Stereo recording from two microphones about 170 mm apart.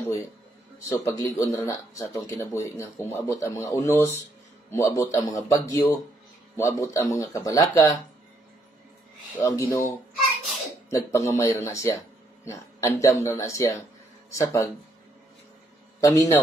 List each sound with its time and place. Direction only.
0.0 s a sound: 15° left (ahead or behind)
0.8 s speech: 20° left (ahead or behind)
9.4 s speech: 20° left (ahead or behind)
16.0 s speech: 20° left (ahead or behind)